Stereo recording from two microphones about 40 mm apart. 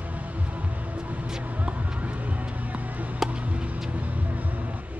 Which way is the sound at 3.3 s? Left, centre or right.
Right.